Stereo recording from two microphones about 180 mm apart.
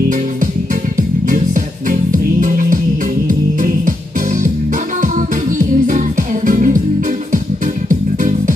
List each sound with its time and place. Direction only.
0.9 s music: 45° right (ahead or behind)
5.9 s music: 45° right (ahead or behind)